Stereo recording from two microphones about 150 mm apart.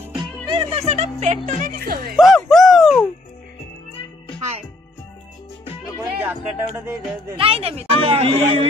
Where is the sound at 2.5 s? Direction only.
Centre (ahead or behind).